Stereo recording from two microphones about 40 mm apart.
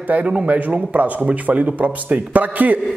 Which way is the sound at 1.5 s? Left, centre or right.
Right.